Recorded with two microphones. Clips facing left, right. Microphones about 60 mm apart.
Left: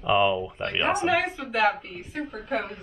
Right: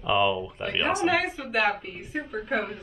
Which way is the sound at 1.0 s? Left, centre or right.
Centre.